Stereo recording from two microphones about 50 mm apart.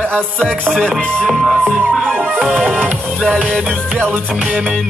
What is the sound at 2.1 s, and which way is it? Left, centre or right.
Music, right.